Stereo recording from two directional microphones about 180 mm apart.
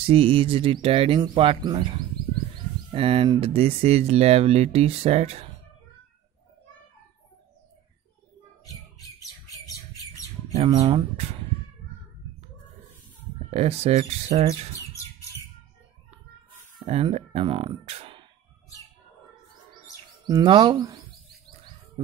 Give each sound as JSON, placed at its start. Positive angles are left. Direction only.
{"t": 0.0, "sound": "speech", "side_deg": -30}
{"t": 9.5, "sound": "squawk", "side_deg": 20}
{"t": 10.8, "sound": "speech", "side_deg": -35}
{"t": 13.5, "sound": "speech", "side_deg": -35}
{"t": 14.5, "sound": "bird", "side_deg": 15}
{"t": 16.8, "sound": "speech", "side_deg": -35}
{"t": 20.2, "sound": "speech", "side_deg": -25}